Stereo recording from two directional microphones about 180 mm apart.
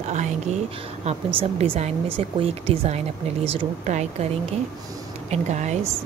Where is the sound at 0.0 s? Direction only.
40° right (ahead or behind).